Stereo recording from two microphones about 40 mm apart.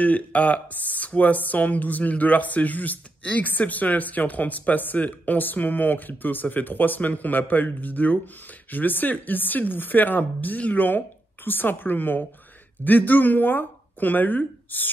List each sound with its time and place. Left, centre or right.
0.0 s speech: left